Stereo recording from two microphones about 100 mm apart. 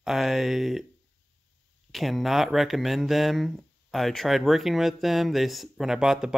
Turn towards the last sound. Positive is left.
turn(degrees=-5)  # may be behind; listen again after turning